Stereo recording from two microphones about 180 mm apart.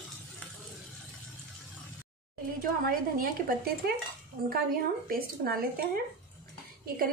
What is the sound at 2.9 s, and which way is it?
Speech, 55° right (ahead or behind).